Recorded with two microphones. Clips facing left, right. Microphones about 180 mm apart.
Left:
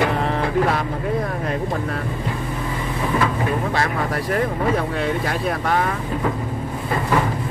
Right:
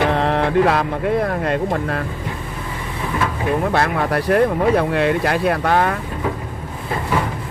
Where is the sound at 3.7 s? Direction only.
65° right (ahead or behind).